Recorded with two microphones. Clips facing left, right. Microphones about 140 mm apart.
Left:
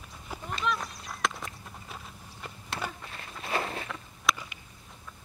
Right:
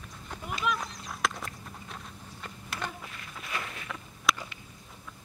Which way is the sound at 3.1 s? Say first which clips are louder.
Left 5 dB; 35° left (ahead or behind).